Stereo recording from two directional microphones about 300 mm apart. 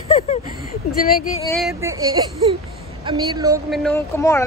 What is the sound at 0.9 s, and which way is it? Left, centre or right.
Speech, left.